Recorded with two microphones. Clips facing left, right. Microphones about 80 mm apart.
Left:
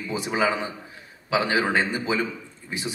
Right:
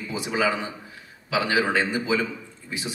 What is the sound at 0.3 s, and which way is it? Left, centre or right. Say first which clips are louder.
A man's voice: even; left.